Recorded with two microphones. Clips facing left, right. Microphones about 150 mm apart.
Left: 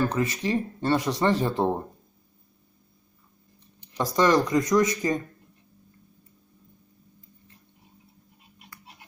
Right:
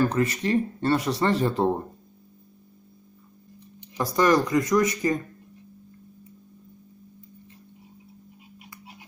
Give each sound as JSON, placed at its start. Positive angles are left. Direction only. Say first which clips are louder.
{"t": 0.1, "sound": "speech", "louder": "right 2 dB", "side_deg": 15}
{"t": 4.2, "sound": "speech", "louder": "even", "side_deg": 20}